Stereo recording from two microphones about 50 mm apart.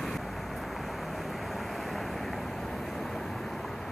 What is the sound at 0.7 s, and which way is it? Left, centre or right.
Vehicle, centre.